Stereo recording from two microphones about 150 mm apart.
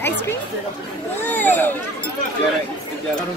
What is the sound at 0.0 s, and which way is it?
Speech, 15° left (ahead or behind).